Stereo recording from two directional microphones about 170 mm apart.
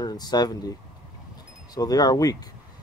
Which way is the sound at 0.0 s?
25° left (ahead or behind).